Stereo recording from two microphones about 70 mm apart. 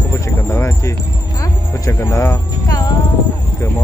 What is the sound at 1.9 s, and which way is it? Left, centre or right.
Speech, left.